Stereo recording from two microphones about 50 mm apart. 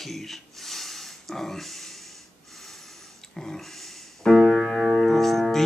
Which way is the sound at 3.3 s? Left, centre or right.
Centre.